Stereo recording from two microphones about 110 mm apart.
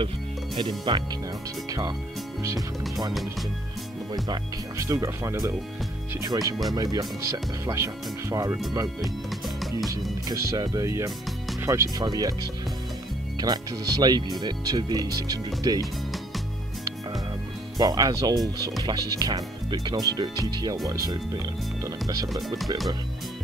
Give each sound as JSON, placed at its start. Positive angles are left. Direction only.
{"t": 0.6, "sound": "speech", "side_deg": -45}
{"t": 4.1, "sound": "speech", "side_deg": -35}
{"t": 10.2, "sound": "speech", "side_deg": -35}
{"t": 12.0, "sound": "speech", "side_deg": -35}
{"t": 13.4, "sound": "speech", "side_deg": -35}
{"t": 17.7, "sound": "speech", "side_deg": -35}